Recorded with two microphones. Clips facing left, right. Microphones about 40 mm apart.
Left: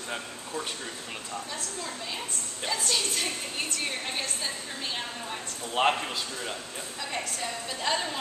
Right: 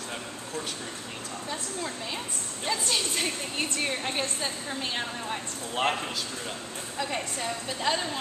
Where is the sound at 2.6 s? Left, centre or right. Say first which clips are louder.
Right 1 dB; centre.